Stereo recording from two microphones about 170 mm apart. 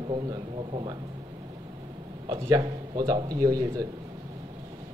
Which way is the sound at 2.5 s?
25° right (ahead or behind).